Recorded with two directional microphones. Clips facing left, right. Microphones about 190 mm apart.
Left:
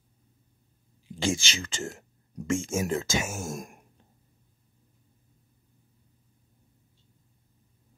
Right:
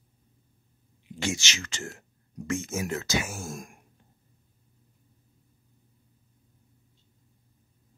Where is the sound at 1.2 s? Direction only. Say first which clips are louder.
Left 3 dB; 30° left (ahead or behind).